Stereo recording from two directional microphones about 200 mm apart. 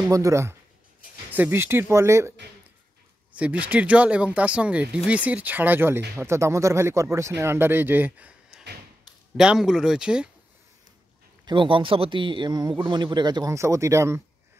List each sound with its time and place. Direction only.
0.1 s speech: 15° right (ahead or behind)
3.3 s speech: 5° right (ahead or behind)
9.4 s speech: 5° right (ahead or behind)
11.4 s a man's voice: 25° right (ahead or behind)